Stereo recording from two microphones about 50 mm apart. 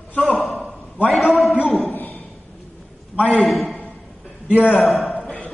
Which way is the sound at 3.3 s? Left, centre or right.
Centre.